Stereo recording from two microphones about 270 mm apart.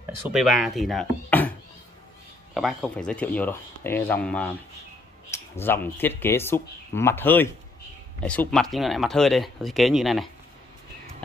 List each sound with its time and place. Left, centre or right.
0.3 s speech: centre
2.5 s speech: centre